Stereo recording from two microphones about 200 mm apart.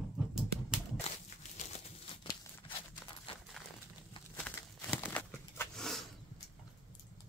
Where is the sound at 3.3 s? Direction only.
25° left (ahead or behind).